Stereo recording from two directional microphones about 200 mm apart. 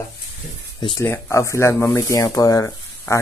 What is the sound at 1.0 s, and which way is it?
Speech, 15° left (ahead or behind).